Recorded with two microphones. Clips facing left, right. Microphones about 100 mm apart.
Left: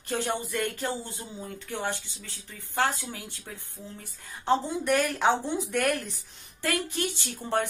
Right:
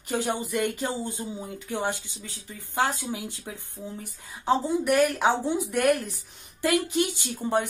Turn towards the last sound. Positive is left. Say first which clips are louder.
# right 3 dB
turn(degrees=-15)  # may be behind; listen again after turning